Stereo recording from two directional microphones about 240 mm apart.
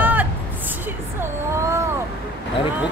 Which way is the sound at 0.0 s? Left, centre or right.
Centre.